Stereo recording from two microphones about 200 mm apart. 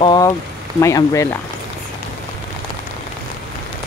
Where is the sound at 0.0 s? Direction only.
20° left (ahead or behind).